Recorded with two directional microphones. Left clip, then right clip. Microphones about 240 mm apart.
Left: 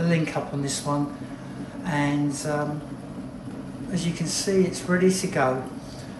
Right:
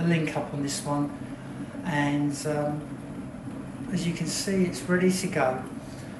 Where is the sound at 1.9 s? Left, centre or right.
Centre.